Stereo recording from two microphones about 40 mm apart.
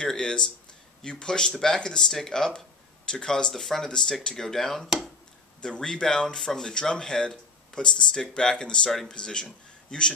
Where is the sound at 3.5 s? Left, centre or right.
Centre.